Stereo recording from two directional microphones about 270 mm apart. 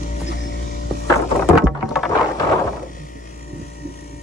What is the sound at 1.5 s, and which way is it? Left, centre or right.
Music, centre.